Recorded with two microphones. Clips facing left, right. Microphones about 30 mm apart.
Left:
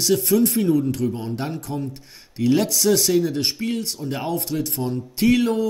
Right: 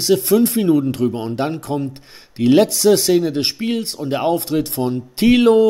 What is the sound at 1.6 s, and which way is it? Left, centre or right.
Speech, right.